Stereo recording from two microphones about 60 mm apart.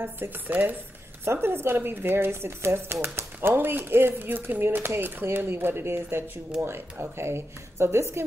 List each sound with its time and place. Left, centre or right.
0.0 s a woman's voice: right